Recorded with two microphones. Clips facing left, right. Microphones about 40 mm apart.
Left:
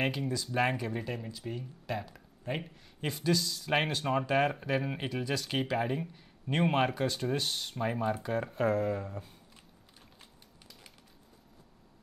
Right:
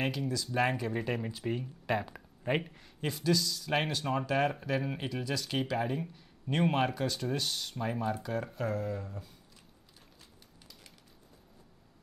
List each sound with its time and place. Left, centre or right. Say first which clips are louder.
0.1 s speech: even; centre
1.3 s speech: right 4 dB; centre
3.0 s speech: even; centre